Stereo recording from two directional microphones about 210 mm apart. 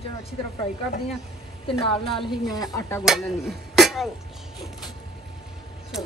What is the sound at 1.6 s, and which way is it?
Speech, 25° left (ahead or behind).